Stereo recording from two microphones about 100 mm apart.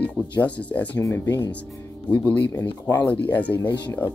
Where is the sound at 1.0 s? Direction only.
25° left (ahead or behind).